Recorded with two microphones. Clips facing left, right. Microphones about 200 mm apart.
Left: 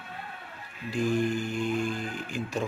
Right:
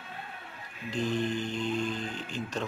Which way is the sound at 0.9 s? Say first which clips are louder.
Left 3 dB; 10° left (ahead or behind).